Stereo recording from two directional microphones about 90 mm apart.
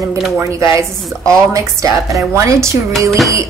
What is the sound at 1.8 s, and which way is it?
Speech, 35° right (ahead or behind).